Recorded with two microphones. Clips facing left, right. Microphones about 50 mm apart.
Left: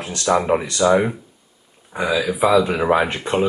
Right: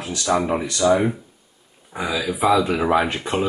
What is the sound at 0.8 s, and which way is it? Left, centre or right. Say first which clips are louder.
Speech: left 1 dB; left.